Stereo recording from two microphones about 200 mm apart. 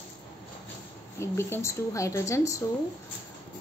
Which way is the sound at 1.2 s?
15° left (ahead or behind).